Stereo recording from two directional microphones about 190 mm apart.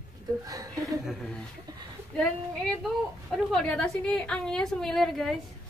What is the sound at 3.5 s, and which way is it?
A woman's voice, 5° left (ahead or behind).